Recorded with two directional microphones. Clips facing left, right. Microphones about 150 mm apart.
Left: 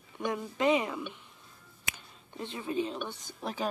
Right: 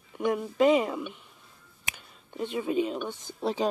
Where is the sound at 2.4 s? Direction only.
15° right (ahead or behind).